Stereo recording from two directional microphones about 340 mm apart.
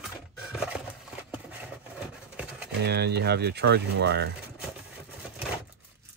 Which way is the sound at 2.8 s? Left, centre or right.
Right.